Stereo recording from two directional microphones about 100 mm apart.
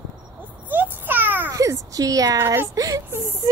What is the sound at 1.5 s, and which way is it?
Speech, 35° right (ahead or behind).